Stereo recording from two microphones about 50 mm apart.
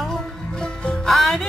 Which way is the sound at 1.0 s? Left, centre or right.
Centre.